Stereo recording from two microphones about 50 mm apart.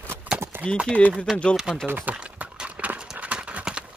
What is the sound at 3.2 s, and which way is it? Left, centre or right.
Clip-clop, right.